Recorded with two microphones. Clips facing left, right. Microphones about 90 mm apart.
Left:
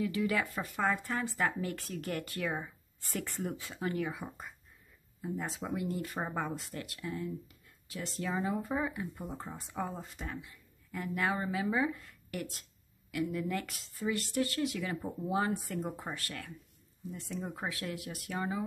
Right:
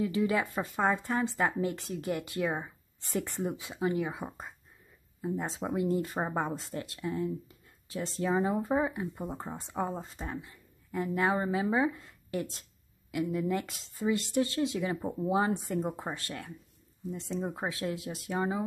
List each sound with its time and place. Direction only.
0.0 s speech: 25° right (ahead or behind)